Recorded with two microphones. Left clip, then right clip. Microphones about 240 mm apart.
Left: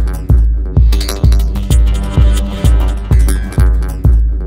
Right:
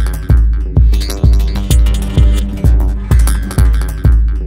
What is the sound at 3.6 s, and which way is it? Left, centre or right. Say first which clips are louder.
Music: even; centre.